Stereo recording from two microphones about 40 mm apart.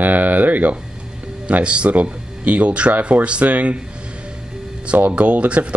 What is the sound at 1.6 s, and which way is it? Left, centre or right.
Speech, right.